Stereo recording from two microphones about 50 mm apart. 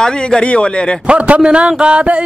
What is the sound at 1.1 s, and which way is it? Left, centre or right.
A man's voice, right.